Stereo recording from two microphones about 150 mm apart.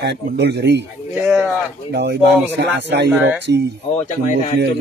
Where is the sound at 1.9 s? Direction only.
90° right.